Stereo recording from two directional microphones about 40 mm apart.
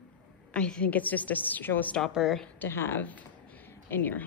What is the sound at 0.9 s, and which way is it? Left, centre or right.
Speech, left.